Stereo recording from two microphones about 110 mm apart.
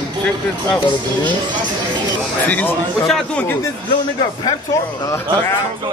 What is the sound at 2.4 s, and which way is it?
Speech, 15° left (ahead or behind).